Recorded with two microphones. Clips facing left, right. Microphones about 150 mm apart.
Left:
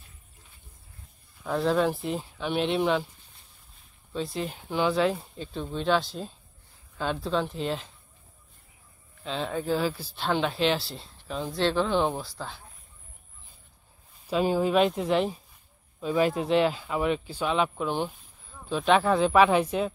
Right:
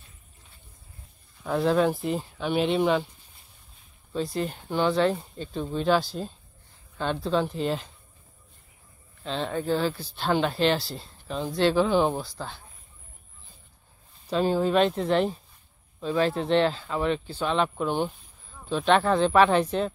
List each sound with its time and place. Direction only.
1.4 s speech: centre (ahead or behind)
4.1 s speech: centre (ahead or behind)
9.2 s speech: centre (ahead or behind)
14.2 s speech: 10° left (ahead or behind)